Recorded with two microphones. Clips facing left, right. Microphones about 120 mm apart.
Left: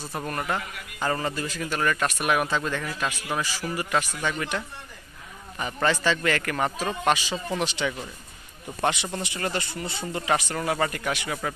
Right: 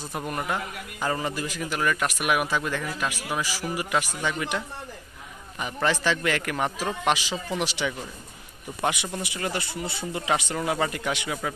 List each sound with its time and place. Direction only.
0.0 s speech: 15° right (ahead or behind)